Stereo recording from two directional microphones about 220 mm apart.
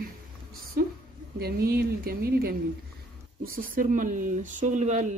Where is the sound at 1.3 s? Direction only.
45° right (ahead or behind).